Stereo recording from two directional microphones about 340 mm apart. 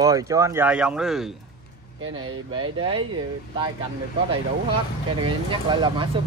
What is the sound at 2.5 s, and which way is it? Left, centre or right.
Speech, centre.